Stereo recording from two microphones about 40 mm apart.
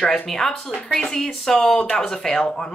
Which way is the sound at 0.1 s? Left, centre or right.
Centre.